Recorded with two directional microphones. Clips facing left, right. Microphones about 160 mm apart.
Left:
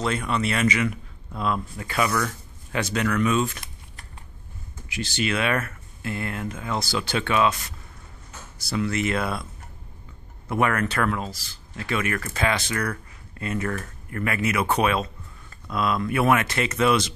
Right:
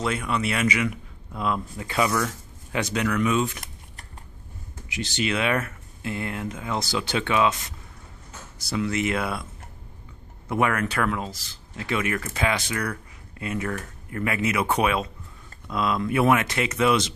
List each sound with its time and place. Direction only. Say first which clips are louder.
0.0 s speech: left 1 dB; 10° right (ahead or behind)
4.8 s speech: even; 20° right (ahead or behind)
10.5 s speech: left 1 dB; 15° right (ahead or behind)